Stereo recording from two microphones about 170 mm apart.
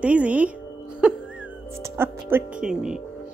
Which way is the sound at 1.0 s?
5° right (ahead or behind).